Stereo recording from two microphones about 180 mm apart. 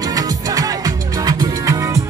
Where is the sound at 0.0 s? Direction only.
20° right (ahead or behind).